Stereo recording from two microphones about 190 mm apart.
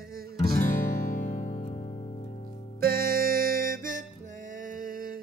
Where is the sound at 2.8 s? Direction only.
50° right (ahead or behind).